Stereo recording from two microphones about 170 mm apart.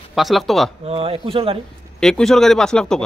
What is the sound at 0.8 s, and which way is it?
Speech, 35° right (ahead or behind).